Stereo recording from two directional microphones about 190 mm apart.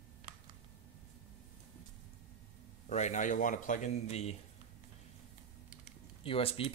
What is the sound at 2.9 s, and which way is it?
Speech, 40° left (ahead or behind).